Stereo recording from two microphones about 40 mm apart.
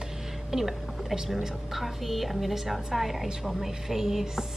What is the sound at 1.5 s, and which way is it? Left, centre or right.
A woman's voice, centre.